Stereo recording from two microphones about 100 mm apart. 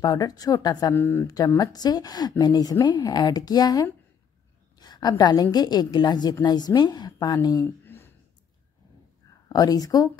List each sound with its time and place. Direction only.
0.0 s speech: 40° left (ahead or behind)
0.9 s a woman's voice: 20° left (ahead or behind)
1.2 s a woman's voice: 40° left (ahead or behind)
7.8 s a sound: 20° left (ahead or behind)
9.5 s speech: 40° left (ahead or behind)